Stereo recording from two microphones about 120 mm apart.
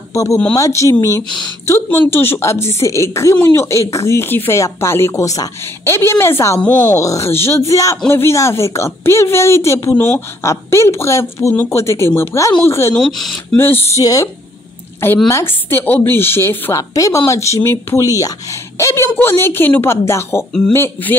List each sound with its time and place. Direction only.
0.1 s speech: 25° left (ahead or behind)
6.6 s a woman's voice: 10° left (ahead or behind)
6.9 s speech: 25° left (ahead or behind)
12.9 s speech: 5° left (ahead or behind)
13.6 s a woman's voice: 20° left (ahead or behind)
14.0 s a woman's voice: 30° left (ahead or behind)